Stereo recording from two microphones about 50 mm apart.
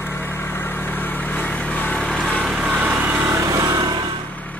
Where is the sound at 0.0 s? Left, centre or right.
Left.